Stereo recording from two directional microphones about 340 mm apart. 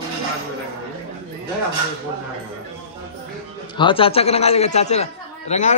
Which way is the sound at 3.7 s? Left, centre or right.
Centre.